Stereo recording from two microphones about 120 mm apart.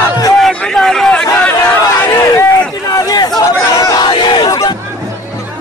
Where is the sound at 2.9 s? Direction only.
30° left (ahead or behind).